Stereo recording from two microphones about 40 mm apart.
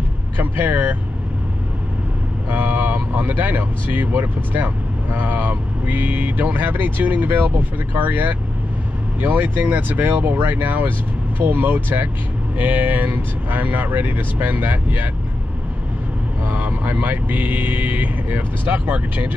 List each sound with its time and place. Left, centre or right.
0.4 s speech: right
2.5 s speech: right
16.4 s speech: right